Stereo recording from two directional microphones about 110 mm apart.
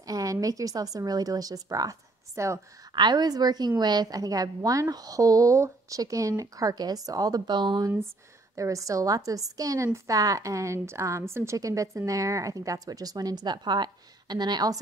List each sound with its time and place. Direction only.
0.0 s speech: 30° right (ahead or behind)
2.9 s a woman's voice: 40° right (ahead or behind)
8.5 s a woman's voice: 30° right (ahead or behind)